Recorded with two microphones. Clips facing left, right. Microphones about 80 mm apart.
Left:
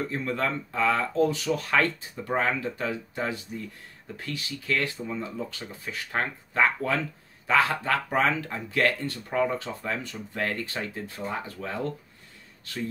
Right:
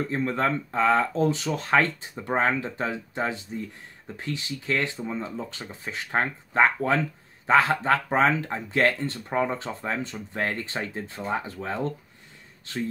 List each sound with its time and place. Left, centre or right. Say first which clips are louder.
0.1 s speech: right 3 dB; right